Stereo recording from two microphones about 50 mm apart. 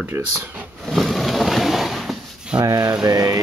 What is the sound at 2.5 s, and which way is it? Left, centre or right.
Speech, right.